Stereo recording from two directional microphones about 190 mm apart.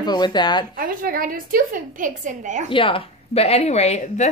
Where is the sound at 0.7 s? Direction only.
50° right (ahead or behind).